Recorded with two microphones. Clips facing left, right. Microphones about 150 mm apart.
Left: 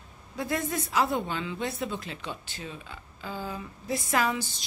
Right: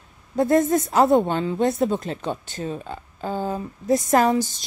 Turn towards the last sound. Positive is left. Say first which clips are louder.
# right 9 dB
turn(degrees=-45)  # may be behind; listen again after turning